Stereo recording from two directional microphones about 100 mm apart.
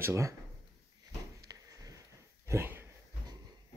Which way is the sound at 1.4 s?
35° right (ahead or behind).